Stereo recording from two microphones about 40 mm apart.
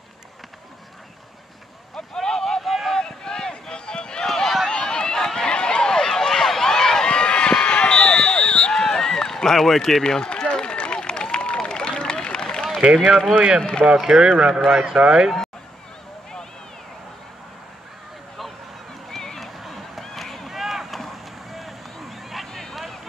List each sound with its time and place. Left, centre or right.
2.1 s boat: centre
2.6 s vehicle: centre
3.0 s a sound: centre
4.3 s run: centre
4.6 s run: centre
7.6 s a sound: left
13.1 s speech: centre
14.0 s a man's voice: centre
19.0 s a sound: centre
19.6 s vehicle: centre